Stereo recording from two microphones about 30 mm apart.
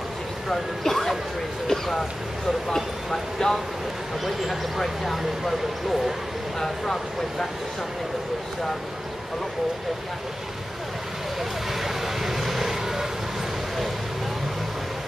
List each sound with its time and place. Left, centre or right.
0.5 s speech: centre
4.2 s speech: centre
6.6 s speech: centre
11.8 s vehicle: centre